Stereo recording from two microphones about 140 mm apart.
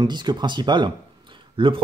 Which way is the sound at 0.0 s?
30° right (ahead or behind).